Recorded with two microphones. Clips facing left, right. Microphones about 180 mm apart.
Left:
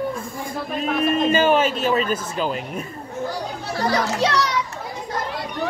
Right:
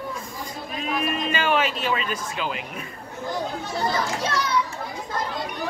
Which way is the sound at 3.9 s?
80° left.